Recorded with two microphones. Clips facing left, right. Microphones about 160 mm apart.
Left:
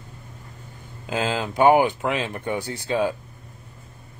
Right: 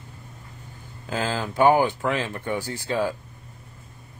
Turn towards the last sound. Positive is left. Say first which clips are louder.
# left 2 dB
turn(degrees=20)  # may be behind; listen again after turning